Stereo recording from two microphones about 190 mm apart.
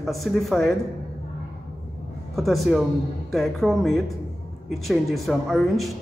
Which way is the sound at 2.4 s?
Centre (ahead or behind).